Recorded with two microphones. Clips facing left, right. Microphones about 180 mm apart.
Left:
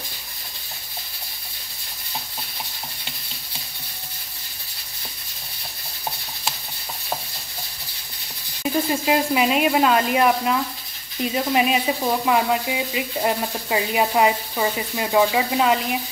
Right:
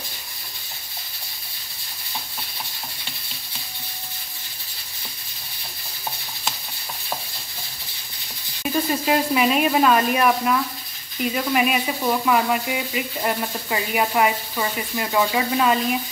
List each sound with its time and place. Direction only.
8.6 s sizzle: 25° left (ahead or behind)
9.0 s speech: 15° left (ahead or behind)